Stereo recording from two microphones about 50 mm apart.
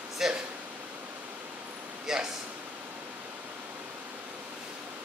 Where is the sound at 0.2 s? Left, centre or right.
Centre.